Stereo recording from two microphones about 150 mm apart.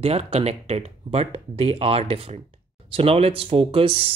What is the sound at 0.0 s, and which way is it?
Speech, 45° right (ahead or behind).